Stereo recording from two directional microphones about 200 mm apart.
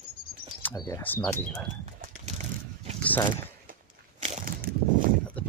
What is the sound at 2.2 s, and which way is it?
Vehicle, 35° right (ahead or behind).